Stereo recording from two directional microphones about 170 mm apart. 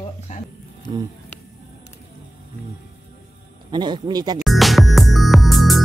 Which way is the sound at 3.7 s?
25° right (ahead or behind).